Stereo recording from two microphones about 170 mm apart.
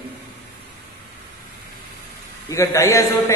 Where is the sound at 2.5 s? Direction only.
20° left (ahead or behind).